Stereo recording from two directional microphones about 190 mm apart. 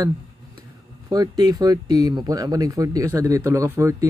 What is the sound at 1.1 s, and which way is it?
Speech, 20° right (ahead or behind).